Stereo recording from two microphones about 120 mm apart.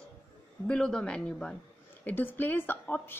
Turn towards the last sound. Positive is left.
turn(degrees=15)  # may be behind; listen again after turning